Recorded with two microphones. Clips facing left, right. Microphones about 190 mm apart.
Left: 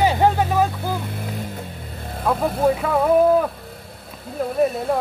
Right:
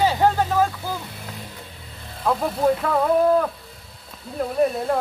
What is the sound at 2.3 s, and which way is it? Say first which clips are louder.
Speech: left 1 dB; 5° left (ahead or behind).